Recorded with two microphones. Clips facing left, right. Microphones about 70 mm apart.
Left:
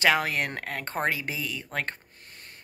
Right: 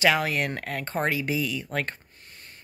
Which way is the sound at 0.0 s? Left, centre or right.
Left.